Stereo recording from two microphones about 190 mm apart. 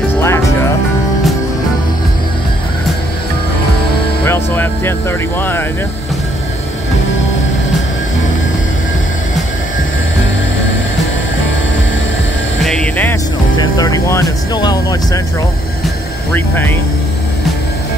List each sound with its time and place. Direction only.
0.2 s music: 15° left (ahead or behind)
4.3 s music: 10° left (ahead or behind)
5.4 s speech: 10° left (ahead or behind)
12.6 s vehicle: 5° left (ahead or behind)
13.6 s speech: 20° left (ahead or behind)
16.3 s speech: 10° left (ahead or behind)